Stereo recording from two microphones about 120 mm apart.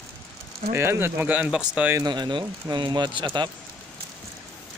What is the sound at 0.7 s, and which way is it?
Speech, 20° right (ahead or behind).